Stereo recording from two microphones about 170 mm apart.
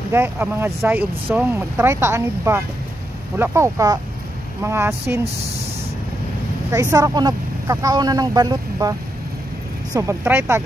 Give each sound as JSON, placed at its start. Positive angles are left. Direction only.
{"t": 0.1, "sound": "speech", "side_deg": -15}
{"t": 6.7, "sound": "speech", "side_deg": -20}
{"t": 9.9, "sound": "speech", "side_deg": -15}